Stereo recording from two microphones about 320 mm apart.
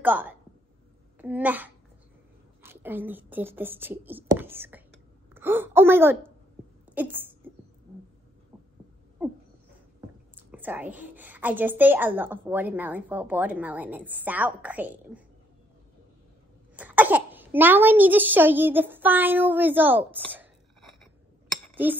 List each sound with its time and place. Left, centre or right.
0.0 s a woman's voice: centre
6.9 s a sound: centre
9.9 s a woman's voice: centre
16.7 s a woman's voice: centre